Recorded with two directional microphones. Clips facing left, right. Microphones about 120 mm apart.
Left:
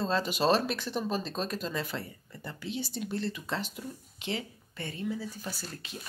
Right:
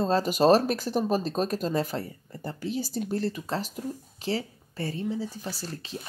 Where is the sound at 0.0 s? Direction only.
45° right (ahead or behind).